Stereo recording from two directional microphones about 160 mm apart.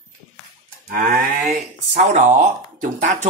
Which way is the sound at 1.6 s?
45° right (ahead or behind).